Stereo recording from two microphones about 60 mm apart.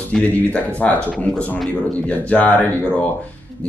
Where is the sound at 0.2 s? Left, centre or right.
Left.